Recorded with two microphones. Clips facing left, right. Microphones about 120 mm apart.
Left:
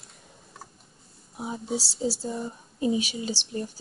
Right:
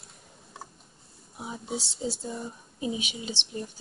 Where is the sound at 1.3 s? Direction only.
Centre (ahead or behind).